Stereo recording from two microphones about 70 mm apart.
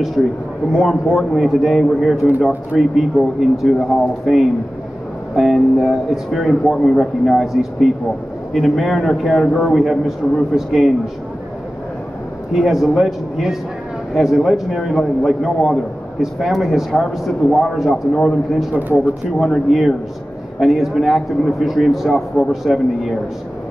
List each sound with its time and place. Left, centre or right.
0.2 s a man's voice: centre
12.5 s a man's voice: centre
18.8 s speech: right
19.4 s a man's voice: centre